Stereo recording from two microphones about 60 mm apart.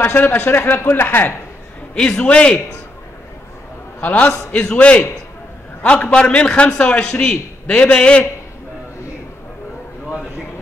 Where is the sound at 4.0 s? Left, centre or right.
Left.